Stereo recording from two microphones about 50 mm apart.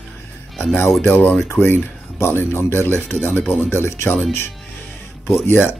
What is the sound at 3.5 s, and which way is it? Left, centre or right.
Speech, left.